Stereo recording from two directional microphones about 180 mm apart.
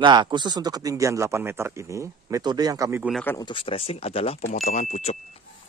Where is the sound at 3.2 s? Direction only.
20° left (ahead or behind); by 5.2 s 40° left (ahead or behind).